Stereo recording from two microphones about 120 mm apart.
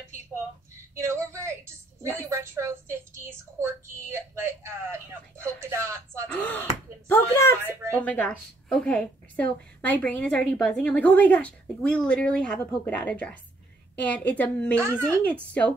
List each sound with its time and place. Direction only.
0.9 s speech: 25° right (ahead or behind)
6.2 s a woman's voice: 15° left (ahead or behind)
14.8 s speech: 20° right (ahead or behind)